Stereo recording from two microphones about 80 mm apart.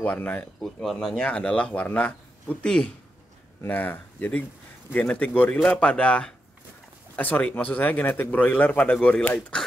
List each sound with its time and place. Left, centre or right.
0.0 s speech: left
3.6 s a man's voice: left